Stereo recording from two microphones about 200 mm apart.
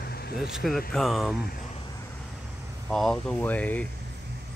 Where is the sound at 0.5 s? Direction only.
Centre (ahead or behind).